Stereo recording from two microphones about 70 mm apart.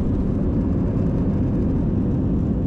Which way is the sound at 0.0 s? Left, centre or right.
Centre.